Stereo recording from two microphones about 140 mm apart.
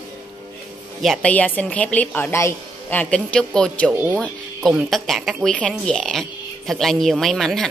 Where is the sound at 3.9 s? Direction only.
15° right (ahead or behind).